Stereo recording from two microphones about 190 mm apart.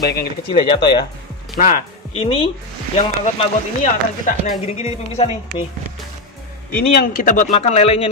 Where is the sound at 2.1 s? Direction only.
30° left (ahead or behind).